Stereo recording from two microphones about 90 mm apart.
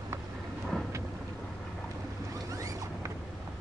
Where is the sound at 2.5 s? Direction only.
40° right (ahead or behind).